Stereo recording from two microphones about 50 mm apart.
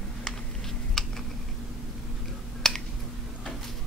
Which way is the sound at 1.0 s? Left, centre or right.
Centre.